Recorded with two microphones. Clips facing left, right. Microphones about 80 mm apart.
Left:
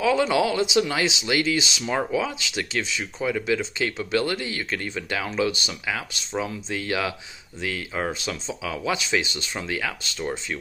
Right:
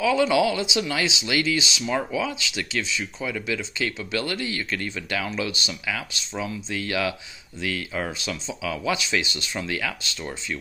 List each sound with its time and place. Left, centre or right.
0.0 s speech: left
9.7 s speech: left